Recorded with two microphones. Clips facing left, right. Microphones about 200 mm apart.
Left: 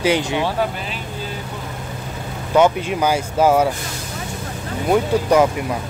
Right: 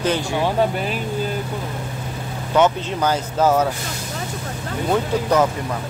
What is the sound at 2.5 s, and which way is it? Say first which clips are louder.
Speech: left 2 dB; 10° left (ahead or behind).